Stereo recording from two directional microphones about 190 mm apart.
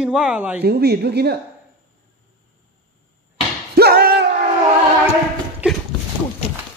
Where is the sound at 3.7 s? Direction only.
55° right (ahead or behind).